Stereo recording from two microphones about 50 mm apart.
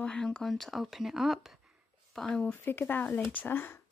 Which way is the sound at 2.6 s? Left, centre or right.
Left.